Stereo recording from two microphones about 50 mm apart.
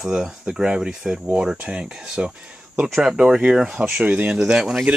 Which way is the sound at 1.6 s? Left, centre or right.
Right.